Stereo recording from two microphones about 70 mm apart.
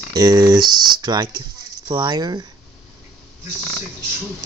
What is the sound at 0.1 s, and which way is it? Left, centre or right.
Speech, right.